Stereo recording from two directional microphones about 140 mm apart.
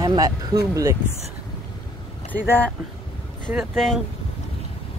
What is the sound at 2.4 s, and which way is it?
Speech, 15° left (ahead or behind).